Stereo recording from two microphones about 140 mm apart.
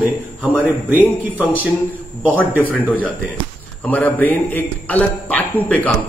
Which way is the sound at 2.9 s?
10° left (ahead or behind).